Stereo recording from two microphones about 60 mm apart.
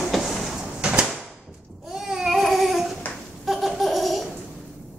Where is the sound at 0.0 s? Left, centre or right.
Centre.